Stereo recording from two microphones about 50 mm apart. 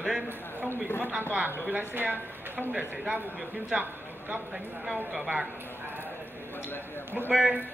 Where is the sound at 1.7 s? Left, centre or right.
Right.